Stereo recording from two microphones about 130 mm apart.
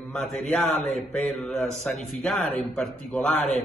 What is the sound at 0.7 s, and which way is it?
Speech, 60° left (ahead or behind).